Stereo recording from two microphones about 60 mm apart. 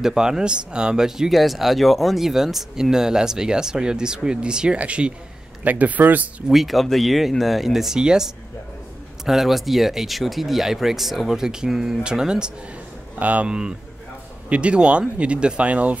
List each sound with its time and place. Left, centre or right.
0.0 s speech: centre; by 6.2 s right
6.5 s speech: centre
13.2 s speech: right
13.5 s speech: centre